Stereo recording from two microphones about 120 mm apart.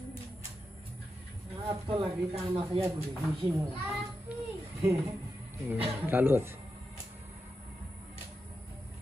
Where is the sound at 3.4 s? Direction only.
25° right (ahead or behind).